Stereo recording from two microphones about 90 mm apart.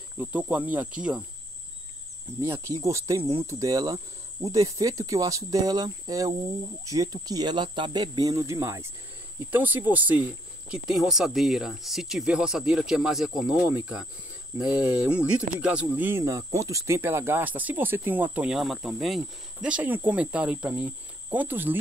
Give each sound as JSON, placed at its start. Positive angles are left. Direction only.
{"t": 0.2, "sound": "speech", "side_deg": -20}
{"t": 2.4, "sound": "speech", "side_deg": -30}
{"t": 8.0, "sound": "speech", "side_deg": -45}
{"t": 9.5, "sound": "speech", "side_deg": -20}
{"t": 10.7, "sound": "speech", "side_deg": -5}
{"t": 13.7, "sound": "speech", "side_deg": -15}
{"t": 16.1, "sound": "speech", "side_deg": -35}
{"t": 18.5, "sound": "speech", "side_deg": -5}
{"t": 19.7, "sound": "speech", "side_deg": -20}